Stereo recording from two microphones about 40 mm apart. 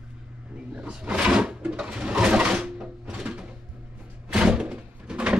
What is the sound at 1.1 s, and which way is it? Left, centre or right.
Drawer open or close, right.